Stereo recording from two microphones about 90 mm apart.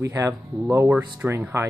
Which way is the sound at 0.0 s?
40° right (ahead or behind).